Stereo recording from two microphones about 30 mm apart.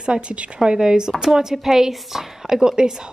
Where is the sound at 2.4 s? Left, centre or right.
Right.